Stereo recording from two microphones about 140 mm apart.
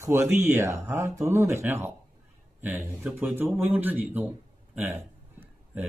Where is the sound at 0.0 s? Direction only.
20° right (ahead or behind).